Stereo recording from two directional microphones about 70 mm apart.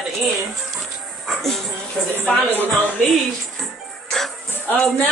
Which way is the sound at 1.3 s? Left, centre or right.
Centre.